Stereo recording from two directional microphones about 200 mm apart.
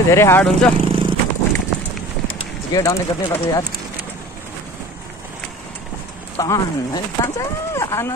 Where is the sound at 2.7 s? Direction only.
15° left (ahead or behind).